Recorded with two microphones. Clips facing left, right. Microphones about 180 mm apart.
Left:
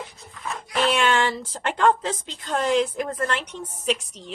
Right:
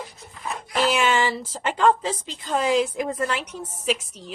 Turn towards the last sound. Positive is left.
turn(degrees=-5)  # may be behind; listen again after turning